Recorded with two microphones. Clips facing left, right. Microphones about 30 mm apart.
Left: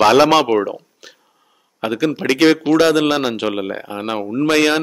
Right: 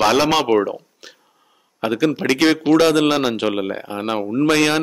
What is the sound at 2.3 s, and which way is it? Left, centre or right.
A man's voice, centre.